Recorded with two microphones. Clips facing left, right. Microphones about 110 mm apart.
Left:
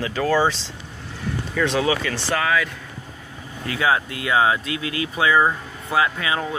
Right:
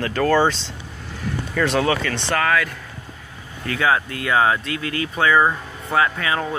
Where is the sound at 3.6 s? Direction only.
20° left (ahead or behind).